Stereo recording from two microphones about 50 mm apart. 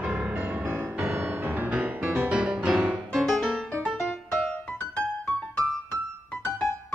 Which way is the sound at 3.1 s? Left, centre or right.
Centre.